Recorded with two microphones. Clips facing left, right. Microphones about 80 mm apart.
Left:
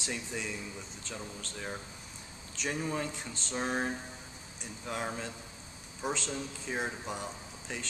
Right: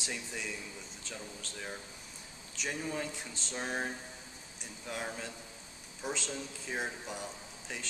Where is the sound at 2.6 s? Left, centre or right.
Centre.